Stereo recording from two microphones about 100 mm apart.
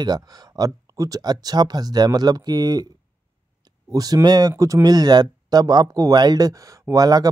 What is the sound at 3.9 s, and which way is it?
Speech, 40° right (ahead or behind).